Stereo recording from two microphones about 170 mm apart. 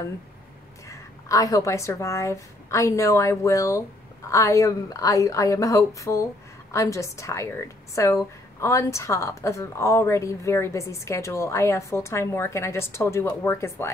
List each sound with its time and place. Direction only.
0.8 s a woman's voice: 20° left (ahead or behind)